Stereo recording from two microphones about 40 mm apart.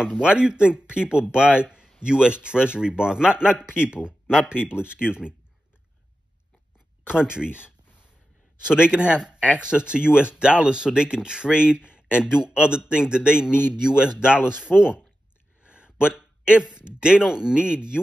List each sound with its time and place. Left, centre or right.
0.2 s a man's voice: right
7.3 s a man's voice: right
15.6 s a sound: right
16.1 s a man's voice: right